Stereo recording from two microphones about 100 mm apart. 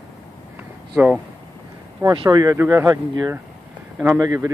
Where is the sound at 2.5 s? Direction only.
25° right (ahead or behind).